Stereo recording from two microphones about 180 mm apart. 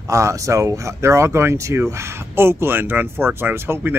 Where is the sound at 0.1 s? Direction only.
15° right (ahead or behind).